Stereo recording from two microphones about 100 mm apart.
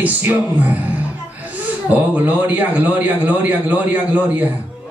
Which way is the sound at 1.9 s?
15° right (ahead or behind).